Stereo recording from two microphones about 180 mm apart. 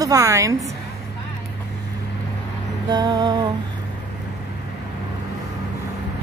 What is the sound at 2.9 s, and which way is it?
Speech, 25° right (ahead or behind).